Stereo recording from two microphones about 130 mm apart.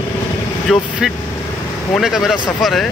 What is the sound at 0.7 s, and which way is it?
Speech, centre (ahead or behind).